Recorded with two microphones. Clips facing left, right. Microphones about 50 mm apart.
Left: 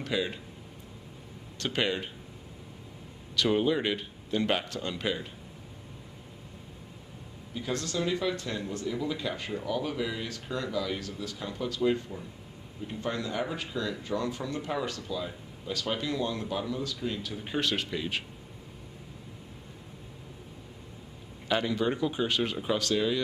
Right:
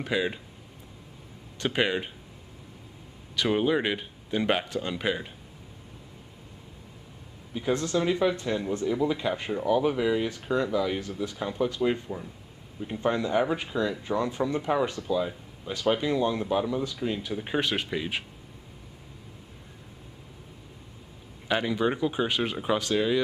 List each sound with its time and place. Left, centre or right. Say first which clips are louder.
0.0 s speech: right 3 dB; right
1.6 s speech: right 3 dB; centre
3.3 s speech: right 1 dB; centre
7.5 s speech: right 6 dB; right
21.5 s speech: right 2 dB; centre